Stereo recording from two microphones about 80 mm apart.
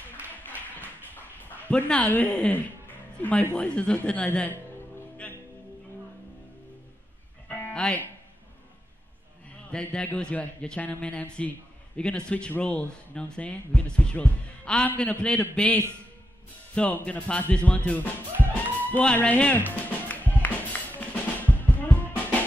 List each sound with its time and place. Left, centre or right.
0.7 s a sound: left
3.2 s speech: centre
7.4 s music: centre
9.7 s a man's voice: centre
19.7 s music: centre
21.1 s drum: left